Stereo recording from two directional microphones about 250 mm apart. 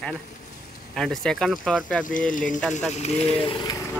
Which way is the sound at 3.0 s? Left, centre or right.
Left.